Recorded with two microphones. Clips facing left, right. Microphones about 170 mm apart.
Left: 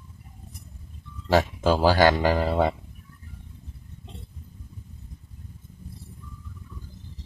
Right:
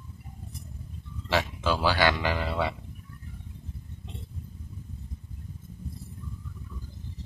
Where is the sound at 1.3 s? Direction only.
45° left (ahead or behind).